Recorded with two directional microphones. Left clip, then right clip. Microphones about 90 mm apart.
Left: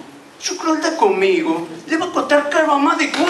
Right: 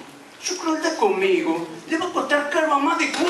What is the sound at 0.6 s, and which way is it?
Speech, 20° left (ahead or behind).